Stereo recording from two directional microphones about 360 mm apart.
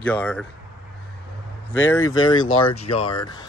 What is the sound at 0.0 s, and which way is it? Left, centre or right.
Speech, centre.